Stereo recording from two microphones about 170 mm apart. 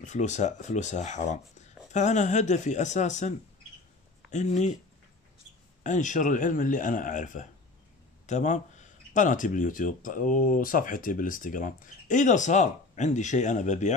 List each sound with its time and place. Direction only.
0.0 s speech: 45° left (ahead or behind)
5.9 s speech: 45° left (ahead or behind)